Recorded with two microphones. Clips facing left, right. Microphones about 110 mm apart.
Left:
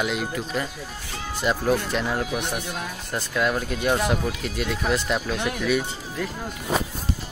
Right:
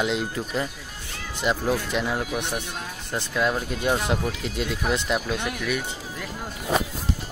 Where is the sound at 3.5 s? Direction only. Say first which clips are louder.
Left 1 dB; 20° right (ahead or behind).